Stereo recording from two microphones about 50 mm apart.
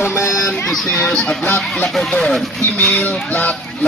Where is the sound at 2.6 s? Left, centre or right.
Left.